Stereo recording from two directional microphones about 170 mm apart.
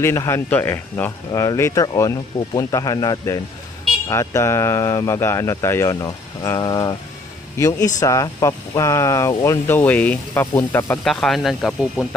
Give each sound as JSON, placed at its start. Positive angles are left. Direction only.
{"t": 0.0, "sound": "a man's voice", "side_deg": 15}
{"t": 11.1, "sound": "speech", "side_deg": 0}